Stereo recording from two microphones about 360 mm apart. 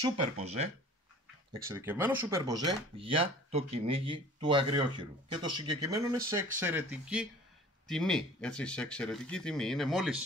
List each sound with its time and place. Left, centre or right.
0.0 s speech: centre
1.5 s speech: centre